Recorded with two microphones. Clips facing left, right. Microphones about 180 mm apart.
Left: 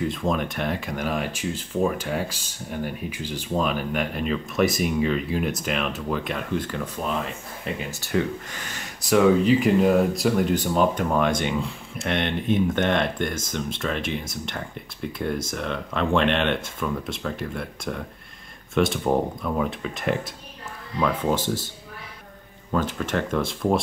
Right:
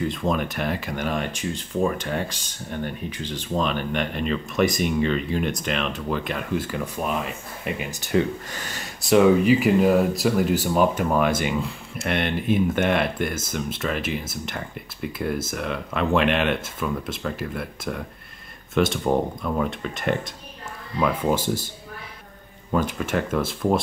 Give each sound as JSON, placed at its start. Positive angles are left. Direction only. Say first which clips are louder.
{"t": 0.0, "sound": "speech", "louder": "right 1 dB", "side_deg": 0}
{"t": 8.5, "sound": "speech", "louder": "right 2 dB", "side_deg": -35}
{"t": 9.4, "sound": "speech", "louder": "right 1 dB", "side_deg": -10}
{"t": 21.0, "sound": "speech", "louder": "right 1 dB", "side_deg": -10}
{"t": 22.7, "sound": "speech", "louder": "right 1 dB", "side_deg": -10}